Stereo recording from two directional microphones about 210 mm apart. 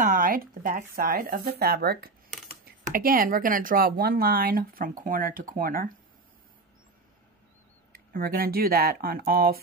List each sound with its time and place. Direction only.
0.0 s speech: 40° right (ahead or behind)
7.9 s speech: 45° right (ahead or behind)